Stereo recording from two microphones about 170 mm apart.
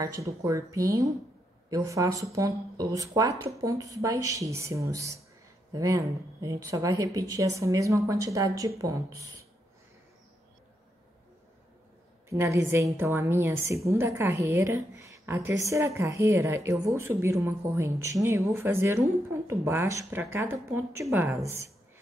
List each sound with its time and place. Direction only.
0.0 s speech: 20° right (ahead or behind)
12.3 s a woman's voice: 15° right (ahead or behind)